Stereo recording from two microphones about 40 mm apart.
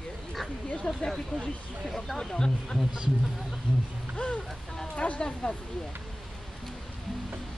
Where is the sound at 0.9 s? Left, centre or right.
Left.